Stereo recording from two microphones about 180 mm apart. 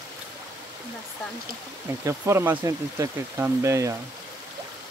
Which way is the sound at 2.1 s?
15° right (ahead or behind).